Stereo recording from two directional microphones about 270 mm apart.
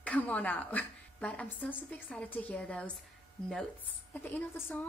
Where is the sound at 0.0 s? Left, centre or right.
Centre.